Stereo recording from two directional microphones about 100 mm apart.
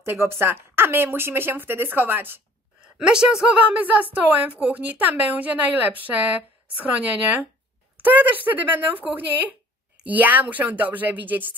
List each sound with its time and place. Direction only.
0.0 s speech: 25° right (ahead or behind)
2.8 s a woman's voice: 10° right (ahead or behind)